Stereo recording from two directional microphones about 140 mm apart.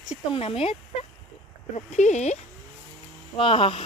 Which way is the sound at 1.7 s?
55° left (ahead or behind).